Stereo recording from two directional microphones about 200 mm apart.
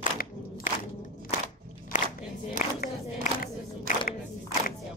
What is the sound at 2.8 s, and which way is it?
Crowd, 45° left (ahead or behind).